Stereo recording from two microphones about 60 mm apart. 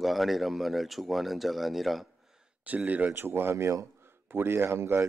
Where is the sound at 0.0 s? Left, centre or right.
Centre.